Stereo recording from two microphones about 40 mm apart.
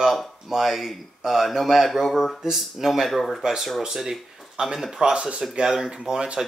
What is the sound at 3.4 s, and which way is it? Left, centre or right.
Speech, centre.